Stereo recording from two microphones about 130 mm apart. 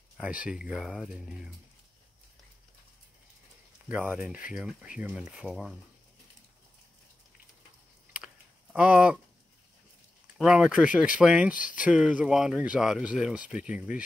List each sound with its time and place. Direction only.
0.2 s speech: 10° right (ahead or behind)
3.9 s speech: 10° right (ahead or behind)
8.7 s speech: 5° right (ahead or behind)
10.3 s speech: 5° right (ahead or behind)
11.5 s speech: 90° left
11.8 s speech: 5° right (ahead or behind)